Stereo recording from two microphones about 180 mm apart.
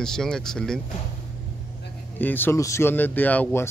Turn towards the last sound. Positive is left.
turn(degrees=10)  # may be behind; listen again after turning